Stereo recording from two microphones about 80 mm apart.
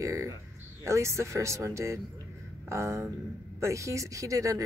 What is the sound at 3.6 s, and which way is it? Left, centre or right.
Speech, right.